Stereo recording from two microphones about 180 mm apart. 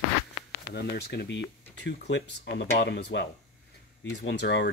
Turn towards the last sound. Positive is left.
turn(degrees=70)  # may be behind; listen again after turning